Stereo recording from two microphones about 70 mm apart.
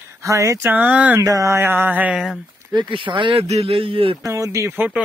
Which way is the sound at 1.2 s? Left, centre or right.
Right.